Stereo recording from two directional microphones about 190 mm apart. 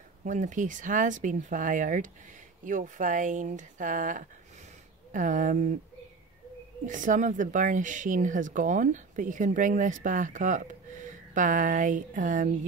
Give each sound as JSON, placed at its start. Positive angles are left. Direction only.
{"t": 0.2, "sound": "speech", "side_deg": -40}
{"t": 6.9, "sound": "speech", "side_deg": -40}